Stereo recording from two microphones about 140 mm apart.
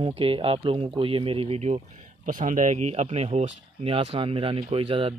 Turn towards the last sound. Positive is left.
turn(degrees=-40)  # may be behind; listen again after turning